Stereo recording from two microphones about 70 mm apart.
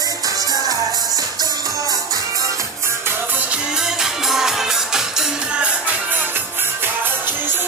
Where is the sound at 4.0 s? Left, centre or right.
Centre.